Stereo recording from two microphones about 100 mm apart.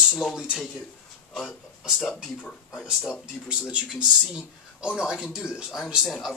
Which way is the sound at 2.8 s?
5° right (ahead or behind).